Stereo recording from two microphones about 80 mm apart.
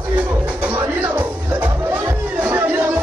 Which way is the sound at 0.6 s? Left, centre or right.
Right.